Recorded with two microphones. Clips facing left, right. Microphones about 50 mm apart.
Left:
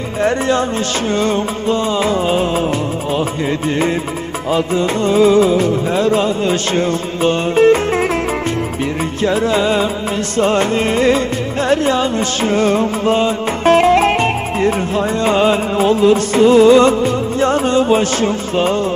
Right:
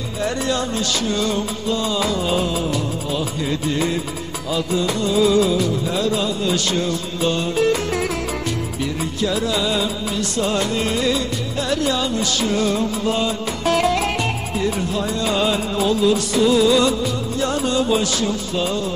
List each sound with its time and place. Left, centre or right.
0.2 s music: left
4.5 s music: left
9.2 s music: left